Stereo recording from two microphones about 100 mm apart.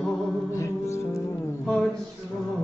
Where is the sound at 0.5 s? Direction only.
30° left (ahead or behind).